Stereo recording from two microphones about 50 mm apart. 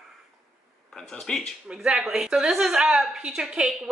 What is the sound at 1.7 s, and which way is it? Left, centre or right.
A woman's voice, centre.